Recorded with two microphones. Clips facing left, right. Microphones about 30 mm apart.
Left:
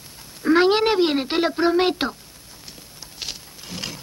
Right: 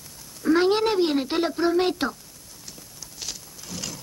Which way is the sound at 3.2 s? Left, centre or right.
Left.